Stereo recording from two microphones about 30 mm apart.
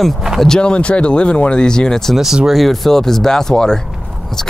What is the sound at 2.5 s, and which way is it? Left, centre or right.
Speech, centre.